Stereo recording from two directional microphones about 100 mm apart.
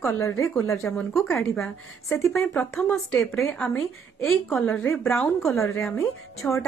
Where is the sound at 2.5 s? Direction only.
30° left (ahead or behind).